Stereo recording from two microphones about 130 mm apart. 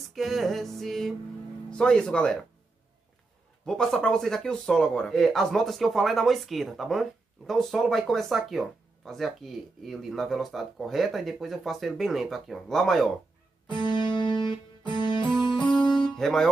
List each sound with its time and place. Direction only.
0.1 s speech: centre (ahead or behind)
3.6 s speech: 5° left (ahead or behind)
13.7 s music: 35° left (ahead or behind)
15.5 s music: 5° left (ahead or behind)
16.2 s speech: 5° left (ahead or behind)